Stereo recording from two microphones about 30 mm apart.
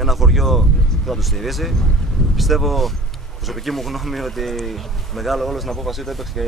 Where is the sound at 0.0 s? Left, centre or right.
Centre.